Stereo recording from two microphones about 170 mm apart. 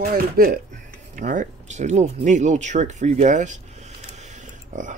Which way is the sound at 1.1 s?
50° right (ahead or behind).